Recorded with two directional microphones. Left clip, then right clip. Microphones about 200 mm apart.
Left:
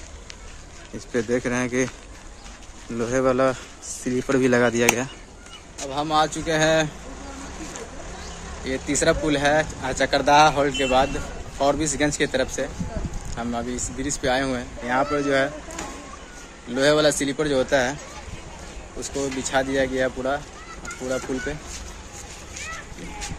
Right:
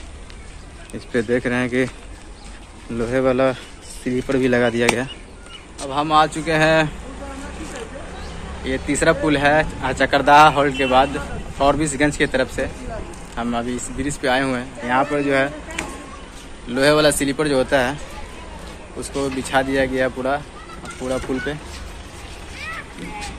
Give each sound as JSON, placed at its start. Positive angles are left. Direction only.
{"t": 0.9, "sound": "speech", "side_deg": 15}
{"t": 3.0, "sound": "speech", "side_deg": 20}
{"t": 5.8, "sound": "speech", "side_deg": 10}
{"t": 8.6, "sound": "a man's voice", "side_deg": 10}
{"t": 16.7, "sound": "speech", "side_deg": 15}
{"t": 18.9, "sound": "speech", "side_deg": 10}